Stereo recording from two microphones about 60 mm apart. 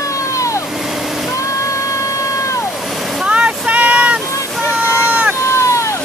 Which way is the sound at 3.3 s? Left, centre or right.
Right.